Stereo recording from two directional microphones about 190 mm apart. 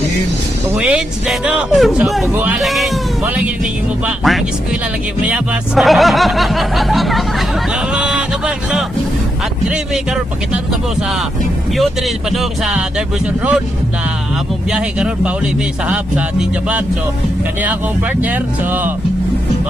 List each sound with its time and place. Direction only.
0.7 s speech: 5° right (ahead or behind)
4.0 s speech: centre (ahead or behind)
7.9 s a sound: 5° right (ahead or behind)
11.7 s speech: centre (ahead or behind)
14.7 s speech: 5° right (ahead or behind)
18.2 s speech: 10° right (ahead or behind)